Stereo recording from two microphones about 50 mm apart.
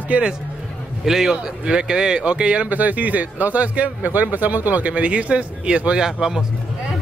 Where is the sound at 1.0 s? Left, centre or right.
Centre.